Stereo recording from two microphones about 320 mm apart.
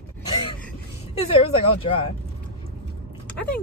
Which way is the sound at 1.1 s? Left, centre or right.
Centre.